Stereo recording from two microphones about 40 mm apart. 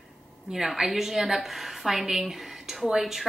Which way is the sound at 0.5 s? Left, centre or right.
Centre.